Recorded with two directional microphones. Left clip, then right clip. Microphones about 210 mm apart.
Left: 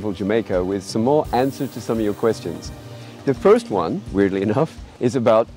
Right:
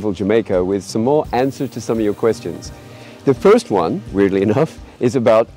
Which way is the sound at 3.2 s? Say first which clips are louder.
Right 3 dB; 20° right (ahead or behind).